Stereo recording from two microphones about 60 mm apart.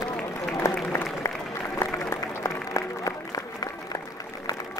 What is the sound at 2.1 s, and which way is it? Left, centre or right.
Applause, left.